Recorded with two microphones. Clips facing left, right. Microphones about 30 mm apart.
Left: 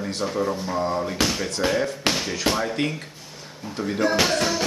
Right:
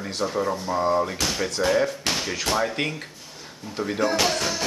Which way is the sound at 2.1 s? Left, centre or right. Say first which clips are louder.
Left 1 dB; centre.